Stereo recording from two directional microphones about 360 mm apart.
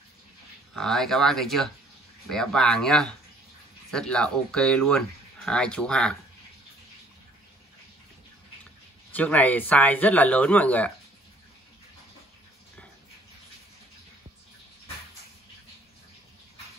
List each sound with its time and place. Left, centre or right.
0.7 s speech: centre
9.1 s speech: centre